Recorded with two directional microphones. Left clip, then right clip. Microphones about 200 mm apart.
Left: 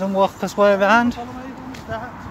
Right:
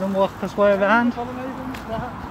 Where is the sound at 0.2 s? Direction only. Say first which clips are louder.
Left 3 dB; 25° left (ahead or behind).